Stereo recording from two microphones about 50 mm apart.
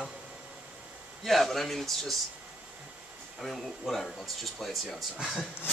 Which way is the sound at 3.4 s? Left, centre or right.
Centre.